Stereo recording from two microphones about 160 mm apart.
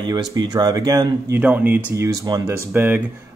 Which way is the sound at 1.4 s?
10° right (ahead or behind).